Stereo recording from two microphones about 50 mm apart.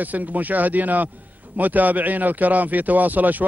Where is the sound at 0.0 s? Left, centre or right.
Right.